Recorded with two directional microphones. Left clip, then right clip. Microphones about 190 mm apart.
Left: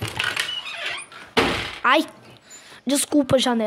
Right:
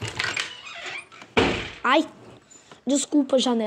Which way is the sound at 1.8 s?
35° left (ahead or behind).